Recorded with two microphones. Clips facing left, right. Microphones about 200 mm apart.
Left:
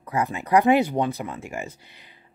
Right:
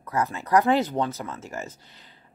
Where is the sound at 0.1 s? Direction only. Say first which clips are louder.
Left 1 dB; 15° left (ahead or behind).